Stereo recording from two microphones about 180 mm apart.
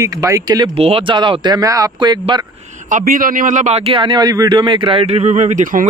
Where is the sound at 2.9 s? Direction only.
50° right (ahead or behind).